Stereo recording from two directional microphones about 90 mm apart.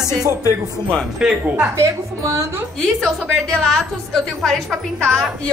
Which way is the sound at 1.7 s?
35° right (ahead or behind).